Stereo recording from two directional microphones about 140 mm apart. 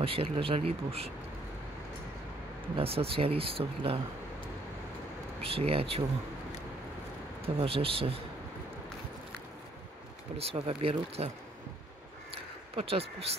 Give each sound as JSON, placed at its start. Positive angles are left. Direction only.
{"t": 0.0, "sound": "speech", "side_deg": -40}
{"t": 2.7, "sound": "speech", "side_deg": -45}
{"t": 5.4, "sound": "speech", "side_deg": -45}
{"t": 7.4, "sound": "speech", "side_deg": -40}
{"t": 10.3, "sound": "speech", "side_deg": -45}
{"t": 12.7, "sound": "speech", "side_deg": -45}